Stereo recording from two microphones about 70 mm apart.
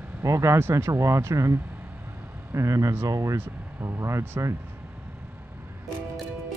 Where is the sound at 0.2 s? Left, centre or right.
Right.